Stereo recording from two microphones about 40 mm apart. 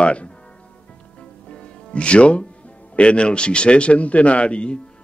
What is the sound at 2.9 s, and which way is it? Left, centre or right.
Speech, left.